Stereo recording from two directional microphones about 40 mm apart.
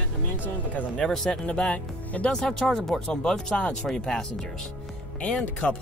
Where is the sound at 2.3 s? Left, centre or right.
Centre.